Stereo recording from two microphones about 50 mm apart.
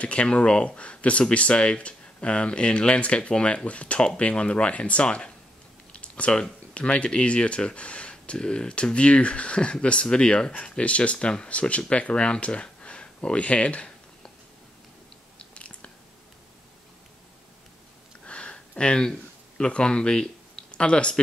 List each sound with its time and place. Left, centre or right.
0.0 s speech: left
5.9 s computer keyboard: left
6.7 s speech: left
15.3 s biting: left
18.2 s a sound: left